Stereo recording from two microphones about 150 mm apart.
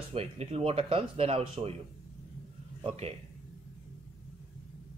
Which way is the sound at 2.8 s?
45° right (ahead or behind).